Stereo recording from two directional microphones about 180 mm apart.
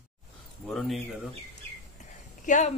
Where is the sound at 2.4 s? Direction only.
45° left (ahead or behind).